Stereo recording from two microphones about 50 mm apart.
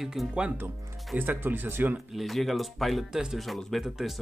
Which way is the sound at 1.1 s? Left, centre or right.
Right.